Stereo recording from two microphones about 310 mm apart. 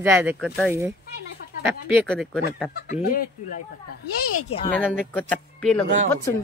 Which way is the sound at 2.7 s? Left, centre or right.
Left.